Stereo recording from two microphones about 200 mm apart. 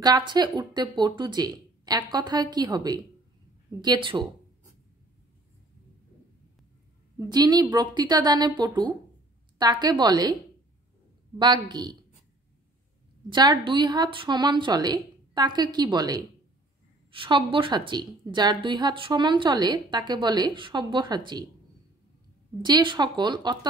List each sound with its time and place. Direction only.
0.0 s a woman's voice: 20° right (ahead or behind)
7.2 s a woman's voice: 20° right (ahead or behind)
11.3 s a woman's voice: 20° right (ahead or behind)
13.3 s a woman's voice: 20° right (ahead or behind)
22.6 s a woman's voice: 20° right (ahead or behind)